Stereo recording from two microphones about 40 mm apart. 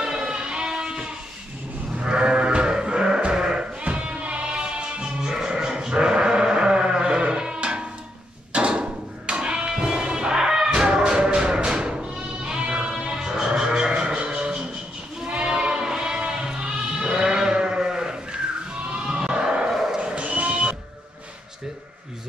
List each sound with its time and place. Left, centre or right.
0.0 s sheep: centre
8.5 s hammer: right
13.0 s music: centre
15.2 s sheep: right
19.7 s dog: centre
20.0 s bow-wow: right